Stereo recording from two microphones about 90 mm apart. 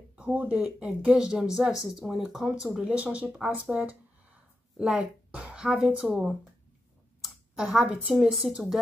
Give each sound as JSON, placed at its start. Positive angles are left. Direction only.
{"t": 0.1, "sound": "speech", "side_deg": -15}
{"t": 0.6, "sound": "speech", "side_deg": -5}
{"t": 2.9, "sound": "speech", "side_deg": -15}
{"t": 7.5, "sound": "speech", "side_deg": -5}